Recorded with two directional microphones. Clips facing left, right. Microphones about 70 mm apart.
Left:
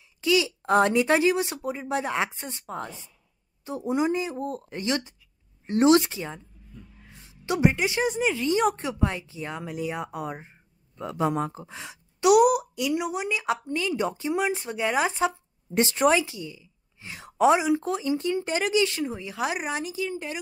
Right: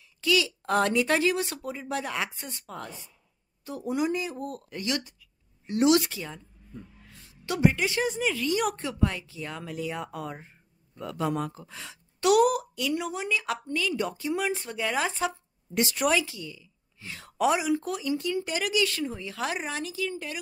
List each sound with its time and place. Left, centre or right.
0.2 s a woman's voice: left